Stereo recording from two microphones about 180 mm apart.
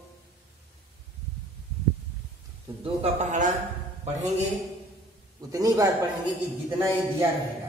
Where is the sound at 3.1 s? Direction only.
45° right (ahead or behind).